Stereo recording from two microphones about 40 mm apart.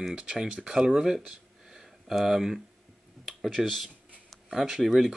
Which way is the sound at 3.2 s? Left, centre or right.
Centre.